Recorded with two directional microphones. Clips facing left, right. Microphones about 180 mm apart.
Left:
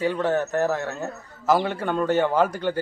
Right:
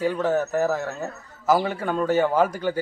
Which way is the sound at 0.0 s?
10° right (ahead or behind).